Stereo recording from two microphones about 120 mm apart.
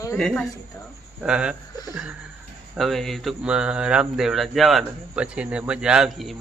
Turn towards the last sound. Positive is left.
turn(degrees=0)  # may be behind; listen again after turning